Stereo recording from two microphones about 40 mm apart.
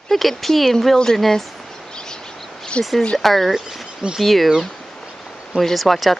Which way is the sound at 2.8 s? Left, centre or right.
Left.